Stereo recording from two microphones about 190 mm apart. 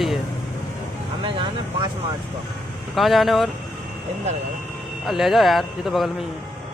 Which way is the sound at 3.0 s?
Centre (ahead or behind).